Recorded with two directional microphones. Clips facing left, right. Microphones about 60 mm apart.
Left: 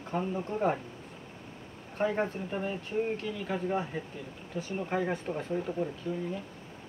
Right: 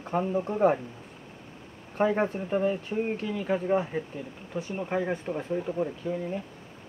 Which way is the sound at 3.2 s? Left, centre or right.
Right.